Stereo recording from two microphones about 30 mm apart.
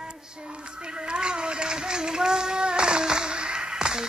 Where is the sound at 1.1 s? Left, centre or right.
Right.